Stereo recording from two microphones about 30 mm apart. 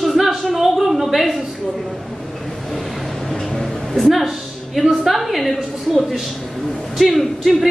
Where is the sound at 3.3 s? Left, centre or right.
Centre.